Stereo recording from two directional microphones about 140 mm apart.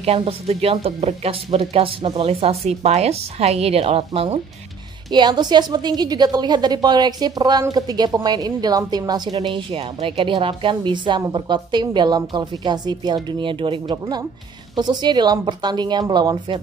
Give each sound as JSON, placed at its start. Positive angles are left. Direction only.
{"t": 0.0, "sound": "speech", "side_deg": -45}
{"t": 5.1, "sound": "a woman's voice", "side_deg": -30}